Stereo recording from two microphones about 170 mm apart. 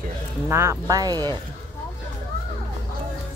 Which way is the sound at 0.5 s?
15° right (ahead or behind).